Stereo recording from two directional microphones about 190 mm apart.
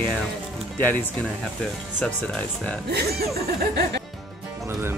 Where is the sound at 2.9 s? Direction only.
55° right (ahead or behind).